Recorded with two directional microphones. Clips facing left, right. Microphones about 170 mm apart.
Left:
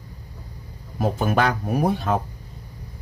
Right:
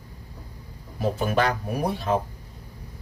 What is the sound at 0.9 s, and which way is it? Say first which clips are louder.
Speech: left 2 dB; 50° left (ahead or behind).